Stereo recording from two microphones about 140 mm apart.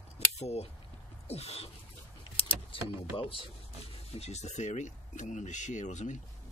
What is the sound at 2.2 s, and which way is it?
Keys jangling, 40° left (ahead or behind).